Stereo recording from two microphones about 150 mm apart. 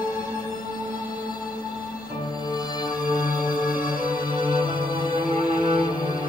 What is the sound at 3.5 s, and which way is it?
Music, 65° left (ahead or behind).